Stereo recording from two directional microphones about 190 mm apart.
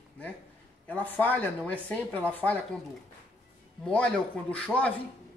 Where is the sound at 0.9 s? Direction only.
10° left (ahead or behind).